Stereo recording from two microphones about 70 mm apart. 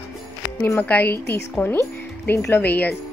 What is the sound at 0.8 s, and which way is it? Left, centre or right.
Speech, left.